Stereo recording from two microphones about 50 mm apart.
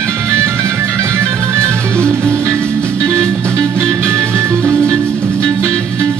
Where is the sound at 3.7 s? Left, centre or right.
Right.